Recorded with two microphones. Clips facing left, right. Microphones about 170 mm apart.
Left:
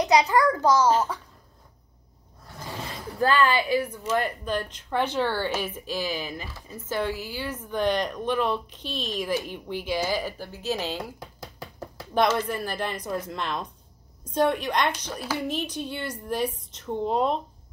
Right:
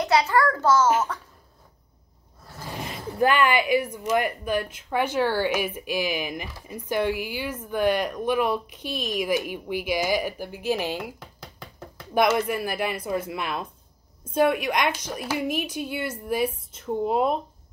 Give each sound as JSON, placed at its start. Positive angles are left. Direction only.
{"t": 0.0, "sound": "a child's voice", "side_deg": 15}
{"t": 2.7, "sound": "speech", "side_deg": -20}